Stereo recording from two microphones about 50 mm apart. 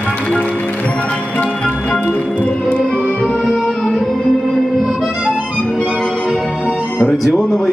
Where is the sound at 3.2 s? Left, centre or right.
Centre.